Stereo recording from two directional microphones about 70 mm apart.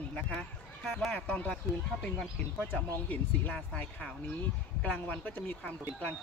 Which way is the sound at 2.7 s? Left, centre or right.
Centre.